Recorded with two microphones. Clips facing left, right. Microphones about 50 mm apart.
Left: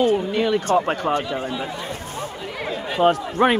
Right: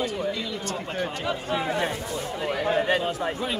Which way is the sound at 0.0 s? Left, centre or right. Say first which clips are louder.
Left 8 dB; left.